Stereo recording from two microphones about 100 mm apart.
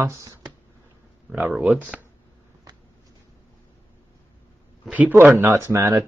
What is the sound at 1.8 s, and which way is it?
Speech, 15° right (ahead or behind).